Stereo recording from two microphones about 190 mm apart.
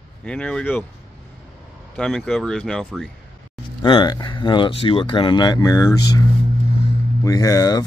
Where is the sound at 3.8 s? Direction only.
25° left (ahead or behind).